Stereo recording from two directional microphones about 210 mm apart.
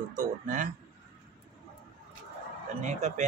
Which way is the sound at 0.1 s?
40° right (ahead or behind).